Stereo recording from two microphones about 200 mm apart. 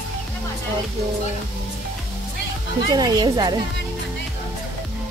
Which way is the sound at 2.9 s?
20° right (ahead or behind).